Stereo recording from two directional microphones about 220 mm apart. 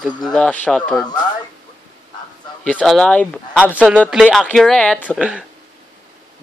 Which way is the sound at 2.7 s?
Centre (ahead or behind).